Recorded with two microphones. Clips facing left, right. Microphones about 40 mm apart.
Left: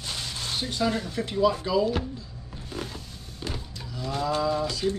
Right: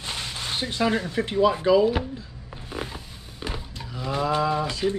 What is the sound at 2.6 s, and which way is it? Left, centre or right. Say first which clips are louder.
Wild animals: right 2 dB; centre.